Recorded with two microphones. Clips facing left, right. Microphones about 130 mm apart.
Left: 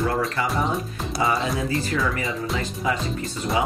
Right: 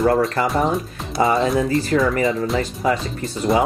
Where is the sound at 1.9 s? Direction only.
45° right (ahead or behind).